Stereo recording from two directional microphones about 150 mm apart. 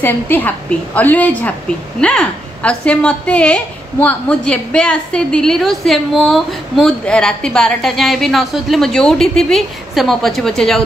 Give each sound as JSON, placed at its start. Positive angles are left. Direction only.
{"t": 0.0, "sound": "a woman's voice", "side_deg": 10}